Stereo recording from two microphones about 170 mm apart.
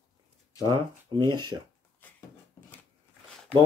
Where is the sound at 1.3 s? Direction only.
25° right (ahead or behind).